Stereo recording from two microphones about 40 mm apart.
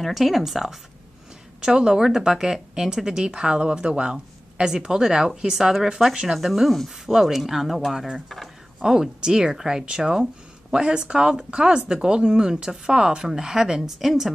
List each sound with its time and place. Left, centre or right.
0.0 s a woman's voice: centre